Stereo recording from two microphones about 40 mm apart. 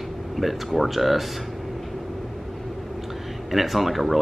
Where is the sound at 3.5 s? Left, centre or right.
Centre.